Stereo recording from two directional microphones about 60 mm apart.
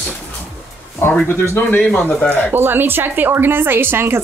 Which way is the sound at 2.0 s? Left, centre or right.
Left.